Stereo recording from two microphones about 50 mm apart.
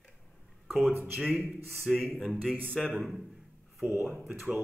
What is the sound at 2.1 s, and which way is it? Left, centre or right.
Speech, centre.